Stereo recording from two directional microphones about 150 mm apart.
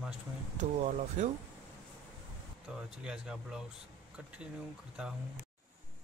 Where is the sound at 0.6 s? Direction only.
50° right (ahead or behind).